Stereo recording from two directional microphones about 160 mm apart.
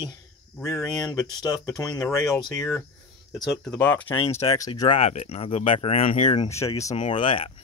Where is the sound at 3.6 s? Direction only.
10° left (ahead or behind).